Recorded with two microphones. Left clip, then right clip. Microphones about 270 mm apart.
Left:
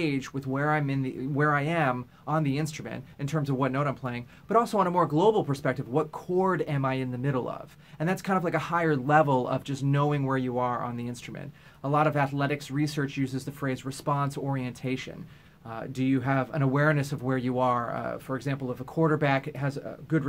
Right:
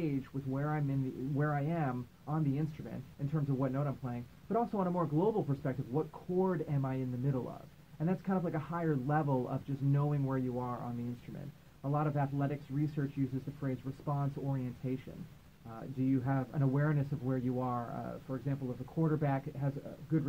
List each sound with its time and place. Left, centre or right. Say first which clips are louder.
0.0 s speech: left 8 dB; left
11.9 s speech: left 11 dB; left